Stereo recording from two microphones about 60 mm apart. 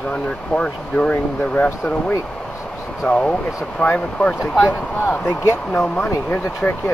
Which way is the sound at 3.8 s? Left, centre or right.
Left.